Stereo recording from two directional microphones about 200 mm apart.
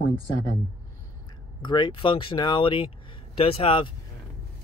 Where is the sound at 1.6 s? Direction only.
25° left (ahead or behind).